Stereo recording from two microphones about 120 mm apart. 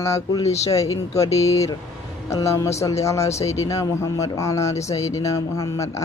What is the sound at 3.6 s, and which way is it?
Speech, 25° left (ahead or behind).